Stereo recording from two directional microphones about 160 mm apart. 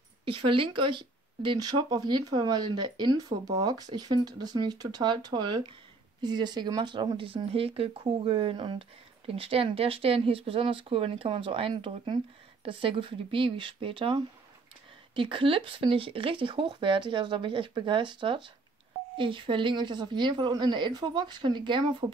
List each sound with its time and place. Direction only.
0.2 s speech: 35° right (ahead or behind)